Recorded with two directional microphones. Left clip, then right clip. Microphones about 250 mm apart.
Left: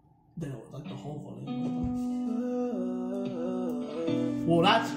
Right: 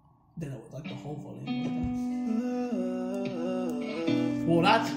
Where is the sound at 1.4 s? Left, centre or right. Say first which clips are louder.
Right 1 dB; right.